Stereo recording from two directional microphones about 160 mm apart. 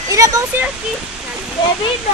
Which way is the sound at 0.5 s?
15° right (ahead or behind).